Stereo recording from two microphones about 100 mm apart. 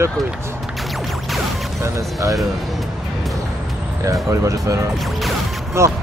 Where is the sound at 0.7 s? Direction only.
Centre (ahead or behind).